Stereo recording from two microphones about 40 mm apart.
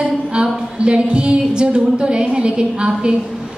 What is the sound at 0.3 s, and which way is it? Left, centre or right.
A woman's voice, right.